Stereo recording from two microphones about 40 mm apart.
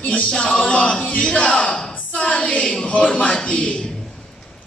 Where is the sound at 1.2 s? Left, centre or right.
Left.